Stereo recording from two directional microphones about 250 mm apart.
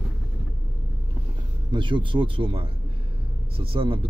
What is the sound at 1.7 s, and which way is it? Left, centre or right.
Speech, centre.